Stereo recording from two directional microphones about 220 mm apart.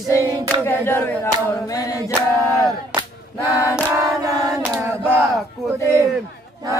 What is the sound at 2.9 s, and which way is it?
Choir, 10° right (ahead or behind).